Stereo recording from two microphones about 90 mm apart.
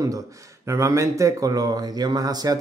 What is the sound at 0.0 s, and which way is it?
Speech, 40° right (ahead or behind).